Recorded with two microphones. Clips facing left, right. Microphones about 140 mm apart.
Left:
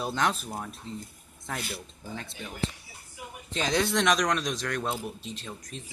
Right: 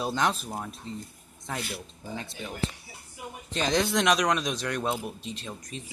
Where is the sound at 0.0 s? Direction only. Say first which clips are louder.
Right 1 dB; centre (ahead or behind).